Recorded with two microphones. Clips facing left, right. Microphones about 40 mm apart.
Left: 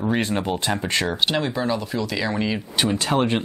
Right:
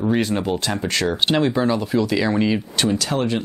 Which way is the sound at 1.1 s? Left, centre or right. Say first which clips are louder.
Right 4 dB; centre.